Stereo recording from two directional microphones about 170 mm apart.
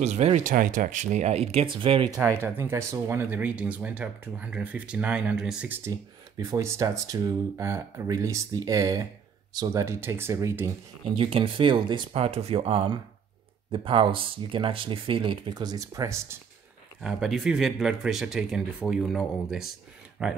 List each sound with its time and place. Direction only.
0.0 s speech: 40° right (ahead or behind)
2.3 s speech: 15° right (ahead or behind)
5.9 s speech: 20° right (ahead or behind)
11.1 s speech: 30° right (ahead or behind)
17.0 s speech: centre (ahead or behind)